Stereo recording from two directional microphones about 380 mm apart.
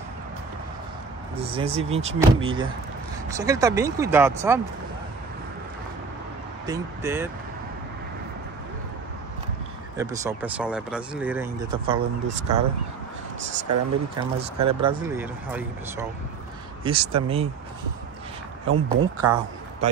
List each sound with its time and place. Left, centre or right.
1.5 s speech: centre
6.6 s speech: centre
9.9 s speech: centre
14.1 s speech: centre
18.7 s speech: right